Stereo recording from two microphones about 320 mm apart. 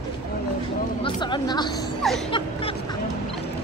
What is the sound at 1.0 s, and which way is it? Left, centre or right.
Speech, centre.